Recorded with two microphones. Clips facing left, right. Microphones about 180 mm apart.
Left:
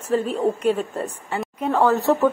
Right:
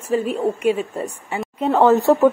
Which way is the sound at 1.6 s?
20° right (ahead or behind).